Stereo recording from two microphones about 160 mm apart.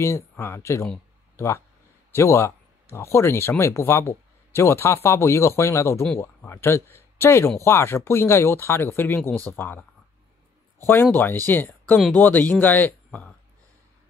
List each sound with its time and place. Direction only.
0.0 s speech: 20° left (ahead or behind)
1.3 s a sound: 15° left (ahead or behind)
2.1 s speech: 15° left (ahead or behind)
10.9 s speech: 15° left (ahead or behind)